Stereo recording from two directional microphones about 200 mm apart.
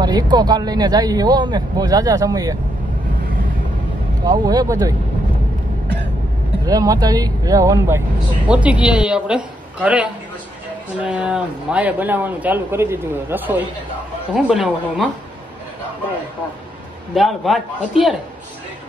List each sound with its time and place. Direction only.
0.0 s speech: 20° right (ahead or behind)
4.3 s speech: 20° right (ahead or behind)
6.6 s a man's voice: 20° right (ahead or behind); by 15.0 s 5° right (ahead or behind)
17.1 s a man's voice: centre (ahead or behind)